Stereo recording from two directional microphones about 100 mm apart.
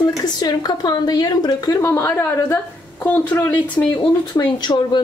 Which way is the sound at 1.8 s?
25° left (ahead or behind).